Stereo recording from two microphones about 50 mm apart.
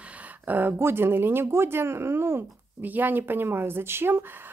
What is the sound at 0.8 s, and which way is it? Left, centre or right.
Speech, right.